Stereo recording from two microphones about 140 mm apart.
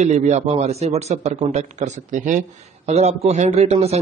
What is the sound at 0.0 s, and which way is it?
A man's voice, 55° right (ahead or behind).